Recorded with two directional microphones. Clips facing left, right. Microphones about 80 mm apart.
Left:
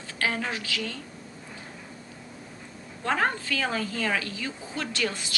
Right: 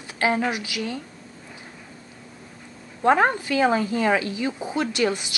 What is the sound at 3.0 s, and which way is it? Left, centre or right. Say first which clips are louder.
Speech: right 8 dB; right.